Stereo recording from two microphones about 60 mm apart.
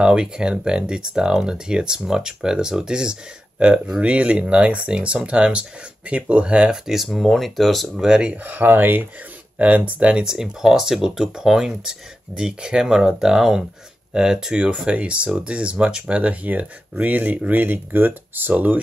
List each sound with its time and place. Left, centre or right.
0.0 s speech: centre
6.7 s speech: centre
8.0 s speech: centre
8.5 s speech: right